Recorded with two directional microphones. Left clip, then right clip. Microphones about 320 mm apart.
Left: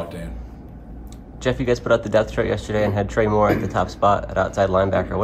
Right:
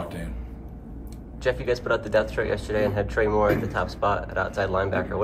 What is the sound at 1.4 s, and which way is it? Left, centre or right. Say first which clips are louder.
A man's voice: left 4 dB; left.